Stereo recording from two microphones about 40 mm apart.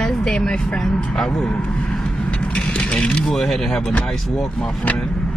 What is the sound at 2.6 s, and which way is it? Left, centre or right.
Vehicle, left.